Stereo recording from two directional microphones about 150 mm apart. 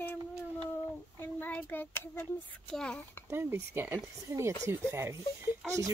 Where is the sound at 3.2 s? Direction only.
15° right (ahead or behind).